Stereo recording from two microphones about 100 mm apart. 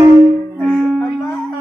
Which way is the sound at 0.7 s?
5° right (ahead or behind).